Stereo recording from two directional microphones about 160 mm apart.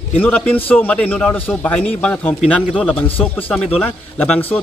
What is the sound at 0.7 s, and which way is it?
A man's voice, 10° left (ahead or behind).